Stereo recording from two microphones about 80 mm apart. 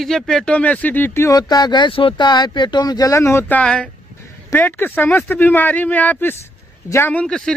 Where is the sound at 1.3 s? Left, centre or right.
Left.